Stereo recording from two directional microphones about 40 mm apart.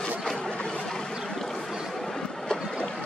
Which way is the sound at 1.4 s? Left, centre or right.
Centre.